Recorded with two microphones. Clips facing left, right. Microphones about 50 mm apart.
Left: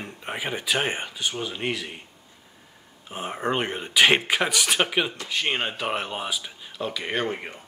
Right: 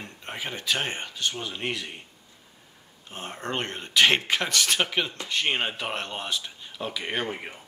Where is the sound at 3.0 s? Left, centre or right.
Centre.